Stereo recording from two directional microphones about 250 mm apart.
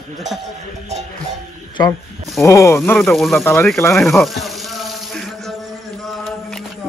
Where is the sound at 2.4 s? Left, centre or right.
Centre.